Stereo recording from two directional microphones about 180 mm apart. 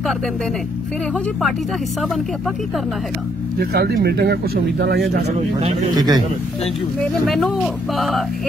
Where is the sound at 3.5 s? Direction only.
60° right (ahead or behind).